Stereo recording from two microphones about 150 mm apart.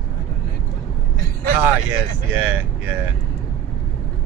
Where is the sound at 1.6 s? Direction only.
15° right (ahead or behind).